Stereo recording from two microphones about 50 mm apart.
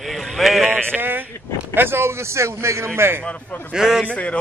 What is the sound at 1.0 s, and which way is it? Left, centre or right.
A man's voice, right.